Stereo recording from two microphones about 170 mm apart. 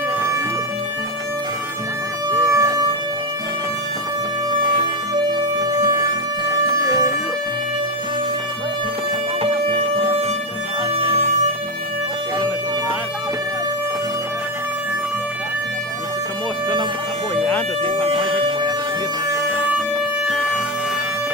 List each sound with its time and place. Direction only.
2.3 s music: 20° right (ahead or behind)
5.6 s music: 20° right (ahead or behind)
6.6 s a sound: 20° right (ahead or behind)
11.0 s music: 35° right (ahead or behind)
17.4 s music: 10° left (ahead or behind)
18.1 s music: 30° right (ahead or behind)